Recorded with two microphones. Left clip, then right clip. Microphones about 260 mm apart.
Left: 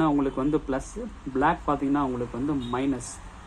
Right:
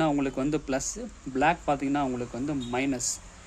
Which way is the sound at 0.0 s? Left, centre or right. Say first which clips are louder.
Left 2 dB; right.